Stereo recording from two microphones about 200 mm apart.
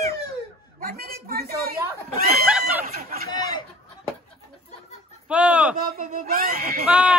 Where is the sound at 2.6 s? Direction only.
50° right (ahead or behind).